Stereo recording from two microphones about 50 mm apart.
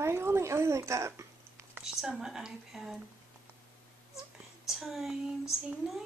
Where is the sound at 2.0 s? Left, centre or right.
Centre.